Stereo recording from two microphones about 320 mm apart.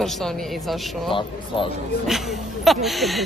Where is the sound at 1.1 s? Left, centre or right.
Centre.